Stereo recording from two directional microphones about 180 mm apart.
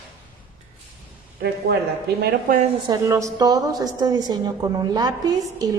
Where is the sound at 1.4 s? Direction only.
60° right (ahead or behind).